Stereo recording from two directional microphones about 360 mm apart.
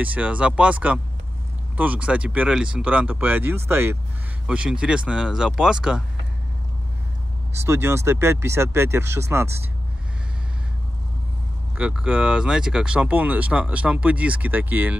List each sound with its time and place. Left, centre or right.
0.0 s speech: centre
7.6 s speech: centre
11.7 s speech: centre